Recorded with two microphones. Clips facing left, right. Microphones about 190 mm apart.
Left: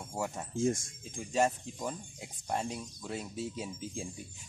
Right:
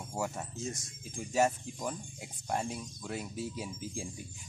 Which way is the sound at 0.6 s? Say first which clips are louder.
Left 14 dB; 50° left (ahead or behind).